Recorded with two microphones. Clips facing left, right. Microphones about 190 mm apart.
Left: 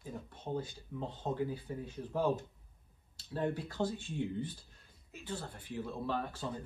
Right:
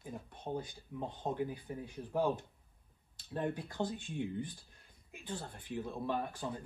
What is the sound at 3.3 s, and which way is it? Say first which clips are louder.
Speech: left 2 dB; 20° right (ahead or behind).